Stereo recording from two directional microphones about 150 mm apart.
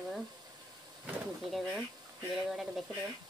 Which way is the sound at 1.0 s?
5° right (ahead or behind).